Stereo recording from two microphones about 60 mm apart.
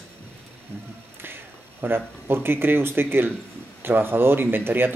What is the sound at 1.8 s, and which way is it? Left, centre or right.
Speech, right.